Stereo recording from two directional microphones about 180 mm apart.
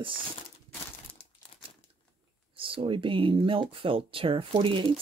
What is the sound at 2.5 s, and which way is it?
Speech, 30° right (ahead or behind).